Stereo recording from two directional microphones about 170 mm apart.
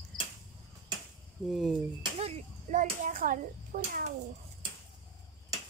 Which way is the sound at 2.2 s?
50° right (ahead or behind).